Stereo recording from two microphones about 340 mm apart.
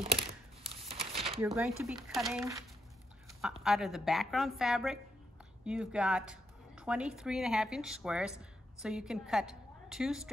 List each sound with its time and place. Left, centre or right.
0.7 s crumpling: centre
1.4 s a woman's voice: centre
3.6 s a woman's voice: centre